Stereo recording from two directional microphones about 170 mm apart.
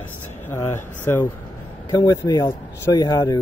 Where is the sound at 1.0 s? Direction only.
10° left (ahead or behind).